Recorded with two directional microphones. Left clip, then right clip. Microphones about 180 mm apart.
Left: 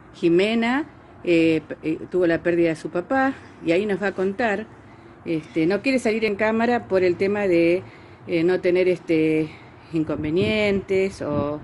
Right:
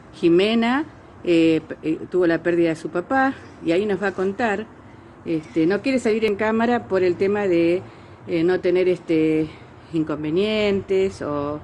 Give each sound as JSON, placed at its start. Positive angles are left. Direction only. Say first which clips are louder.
{"t": 0.2, "sound": "a woman's voice", "louder": "right 2 dB", "side_deg": 10}